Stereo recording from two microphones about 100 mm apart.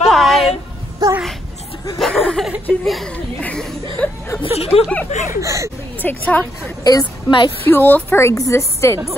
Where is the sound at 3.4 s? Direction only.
15° left (ahead or behind).